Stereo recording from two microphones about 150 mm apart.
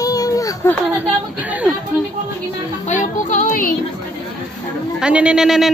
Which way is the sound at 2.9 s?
55° left (ahead or behind).